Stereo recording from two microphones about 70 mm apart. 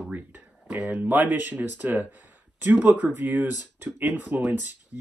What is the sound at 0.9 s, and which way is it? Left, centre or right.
Speech, right.